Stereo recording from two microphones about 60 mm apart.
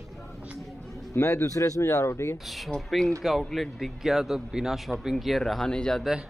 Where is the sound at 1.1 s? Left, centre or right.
Left.